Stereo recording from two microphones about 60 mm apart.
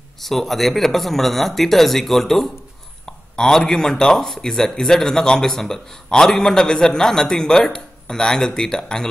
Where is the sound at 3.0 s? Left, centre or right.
Centre.